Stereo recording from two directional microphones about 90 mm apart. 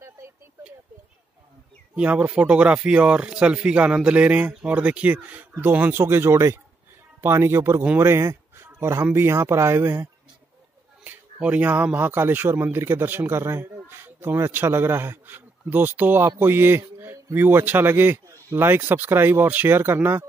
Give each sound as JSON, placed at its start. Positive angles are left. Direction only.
{"t": 2.0, "sound": "speech", "side_deg": -15}
{"t": 11.1, "sound": "speech", "side_deg": -15}